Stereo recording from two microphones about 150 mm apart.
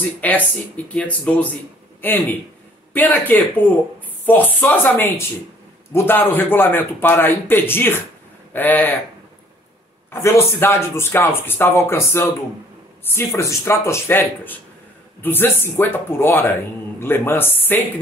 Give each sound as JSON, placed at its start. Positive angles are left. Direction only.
{"t": 0.2, "sound": "speech", "side_deg": 10}
{"t": 10.1, "sound": "speech", "side_deg": 20}